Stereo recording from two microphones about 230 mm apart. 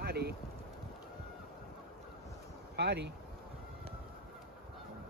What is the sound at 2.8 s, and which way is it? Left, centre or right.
Speech, right.